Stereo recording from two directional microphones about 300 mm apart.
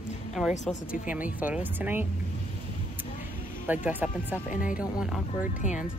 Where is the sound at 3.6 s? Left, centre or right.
Centre.